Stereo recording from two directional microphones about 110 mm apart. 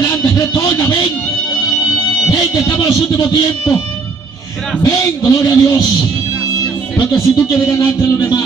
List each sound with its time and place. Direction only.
0.0 s music: 35° left (ahead or behind)
4.8 s a man's voice: 30° left (ahead or behind)
7.0 s a man's voice: 30° left (ahead or behind)